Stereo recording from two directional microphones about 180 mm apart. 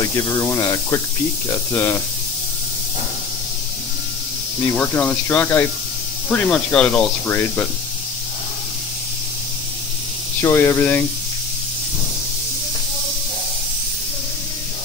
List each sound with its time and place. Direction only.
0.0 s speech: 15° left (ahead or behind)
4.7 s speech: 10° left (ahead or behind)
10.4 s speech: 15° left (ahead or behind)